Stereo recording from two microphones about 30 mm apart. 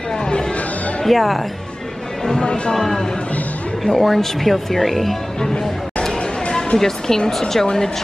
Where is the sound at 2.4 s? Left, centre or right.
Left.